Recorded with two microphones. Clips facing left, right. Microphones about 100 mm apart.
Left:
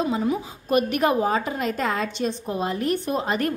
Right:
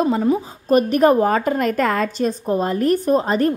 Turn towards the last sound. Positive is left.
turn(degrees=-35)  # may be behind; listen again after turning